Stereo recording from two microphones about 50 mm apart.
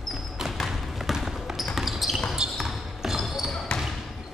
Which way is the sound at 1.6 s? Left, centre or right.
Centre.